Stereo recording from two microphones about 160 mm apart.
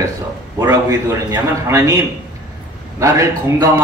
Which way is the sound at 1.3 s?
15° right (ahead or behind).